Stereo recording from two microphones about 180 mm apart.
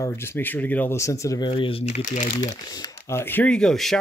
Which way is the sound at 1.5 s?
30° left (ahead or behind).